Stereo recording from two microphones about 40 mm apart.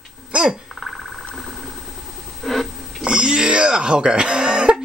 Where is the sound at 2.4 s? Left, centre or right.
Centre.